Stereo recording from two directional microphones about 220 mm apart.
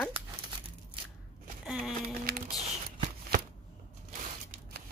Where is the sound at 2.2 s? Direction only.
35° right (ahead or behind).